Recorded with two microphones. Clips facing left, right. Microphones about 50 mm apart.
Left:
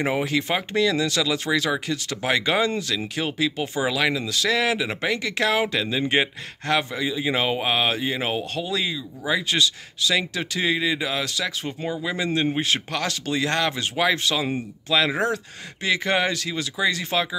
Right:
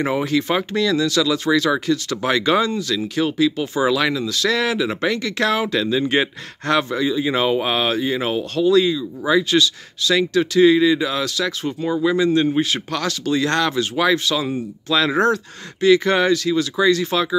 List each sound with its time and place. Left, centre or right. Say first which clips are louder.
0.0 s speech: right 3 dB; centre
12.5 s speech: right 4 dB; left